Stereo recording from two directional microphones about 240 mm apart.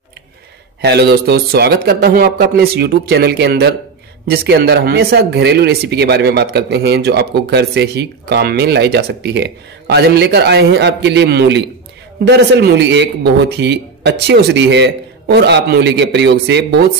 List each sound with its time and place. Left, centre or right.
0.7 s speech: right